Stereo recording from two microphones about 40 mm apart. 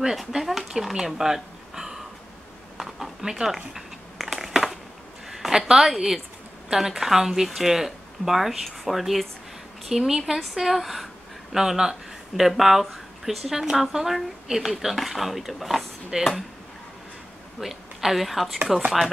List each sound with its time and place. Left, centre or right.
0.4 s speech: centre
2.8 s a sound: centre
5.3 s a woman's voice: centre
11.5 s speech: centre
16.1 s speech: centre
17.6 s a woman's voice: centre